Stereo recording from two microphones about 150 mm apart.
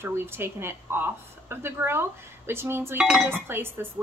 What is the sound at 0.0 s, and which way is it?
Speech, 15° right (ahead or behind).